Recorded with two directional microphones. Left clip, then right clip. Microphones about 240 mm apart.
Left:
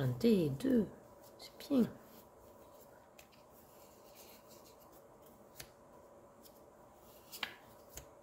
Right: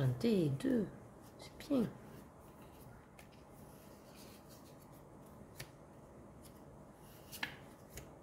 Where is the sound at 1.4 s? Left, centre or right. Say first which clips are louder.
Left 2 dB; centre.